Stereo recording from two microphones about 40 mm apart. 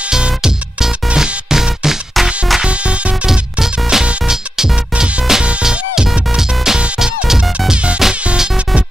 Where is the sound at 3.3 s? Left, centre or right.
Centre.